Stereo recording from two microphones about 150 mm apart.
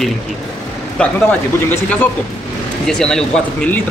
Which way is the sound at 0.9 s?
10° left (ahead or behind).